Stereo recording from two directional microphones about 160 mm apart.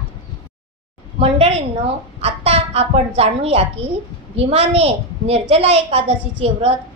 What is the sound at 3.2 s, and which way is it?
A woman's voice, 40° right (ahead or behind).